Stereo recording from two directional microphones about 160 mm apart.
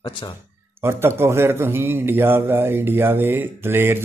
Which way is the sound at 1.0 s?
15° right (ahead or behind).